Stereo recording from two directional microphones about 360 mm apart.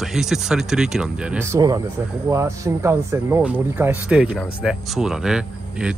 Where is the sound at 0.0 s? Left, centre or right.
Centre.